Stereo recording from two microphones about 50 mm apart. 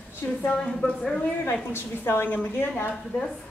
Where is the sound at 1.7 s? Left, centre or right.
Left.